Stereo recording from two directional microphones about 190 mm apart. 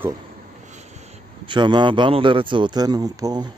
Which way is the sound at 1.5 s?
25° right (ahead or behind).